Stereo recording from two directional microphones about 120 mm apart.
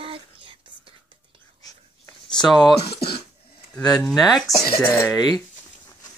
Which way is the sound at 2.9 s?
50° left (ahead or behind).